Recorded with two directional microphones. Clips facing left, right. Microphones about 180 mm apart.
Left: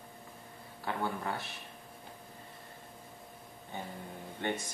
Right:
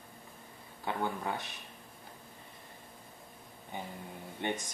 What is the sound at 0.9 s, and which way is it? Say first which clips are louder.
Speech: right 1 dB; 15° right (ahead or behind).